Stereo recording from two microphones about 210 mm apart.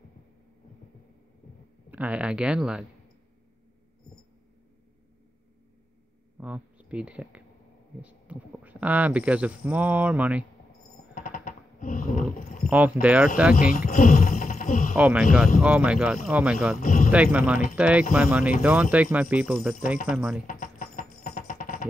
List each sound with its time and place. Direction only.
1.9 s speech: 5° right (ahead or behind)
6.4 s speech: 5° right (ahead or behind)
11.1 s a sound: 40° left (ahead or behind)
12.6 s speech: 10° right (ahead or behind)
13.7 s speech: 40° left (ahead or behind)
15.0 s speech: 5° right (ahead or behind)
16.8 s speech: 40° left (ahead or behind)
17.1 s speech: 5° right (ahead or behind)
20.4 s music: 40° left (ahead or behind)